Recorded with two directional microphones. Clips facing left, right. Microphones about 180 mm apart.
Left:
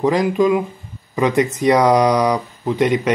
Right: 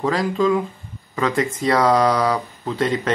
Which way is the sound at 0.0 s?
20° left (ahead or behind).